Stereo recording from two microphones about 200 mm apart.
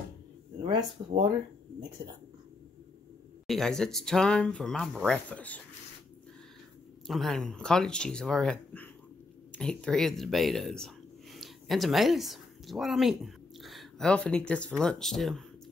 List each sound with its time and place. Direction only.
0.7 s speech: 25° right (ahead or behind)
3.4 s speech: centre (ahead or behind)
7.1 s speech: centre (ahead or behind)